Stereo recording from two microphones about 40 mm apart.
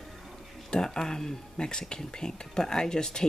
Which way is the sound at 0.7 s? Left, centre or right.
Centre.